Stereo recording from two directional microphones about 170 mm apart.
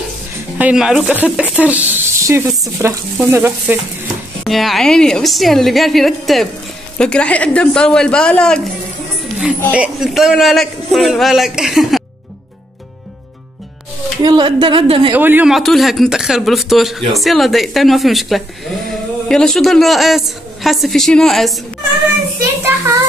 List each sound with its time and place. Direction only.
0.6 s speech: 5° right (ahead or behind)
4.5 s a woman's voice: centre (ahead or behind)
9.7 s a woman's voice: 5° right (ahead or behind)
14.2 s a woman's voice: 25° right (ahead or behind)
15.1 s a woman's voice: 10° right (ahead or behind)
22.4 s speech: 15° right (ahead or behind)